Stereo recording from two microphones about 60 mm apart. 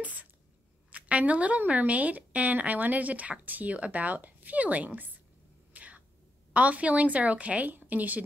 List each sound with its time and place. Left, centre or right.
0.0 s a sound: right
0.9 s a woman's voice: right
5.7 s whispering: right
6.5 s a woman's voice: right